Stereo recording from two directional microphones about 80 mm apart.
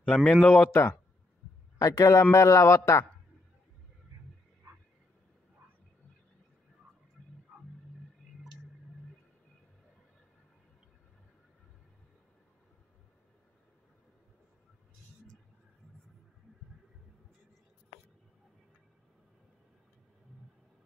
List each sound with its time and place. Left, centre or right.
0.0 s speech: centre
1.8 s a man's voice: left